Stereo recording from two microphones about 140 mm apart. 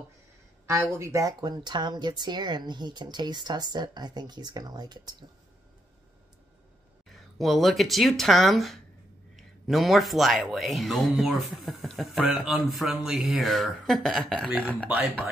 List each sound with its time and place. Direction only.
0.7 s speech: 20° right (ahead or behind)
7.1 s speech: centre (ahead or behind)